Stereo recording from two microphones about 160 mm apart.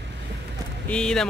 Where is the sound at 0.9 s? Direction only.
5° left (ahead or behind).